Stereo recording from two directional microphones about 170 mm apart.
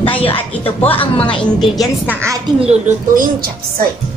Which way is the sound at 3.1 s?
55° right (ahead or behind).